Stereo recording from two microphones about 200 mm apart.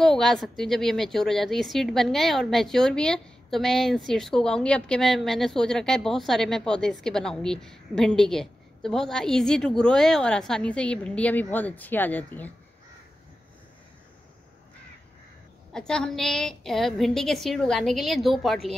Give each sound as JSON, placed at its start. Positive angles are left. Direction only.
{"t": 0.0, "sound": "speech", "side_deg": 0}
{"t": 15.7, "sound": "speech", "side_deg": 5}